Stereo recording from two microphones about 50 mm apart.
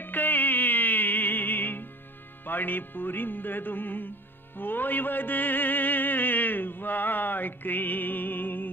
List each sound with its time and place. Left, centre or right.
0.0 s music: left